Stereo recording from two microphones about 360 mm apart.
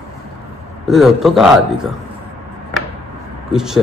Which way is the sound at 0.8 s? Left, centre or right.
Centre.